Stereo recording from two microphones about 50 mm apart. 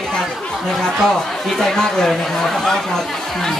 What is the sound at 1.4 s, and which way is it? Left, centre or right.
Speech, centre.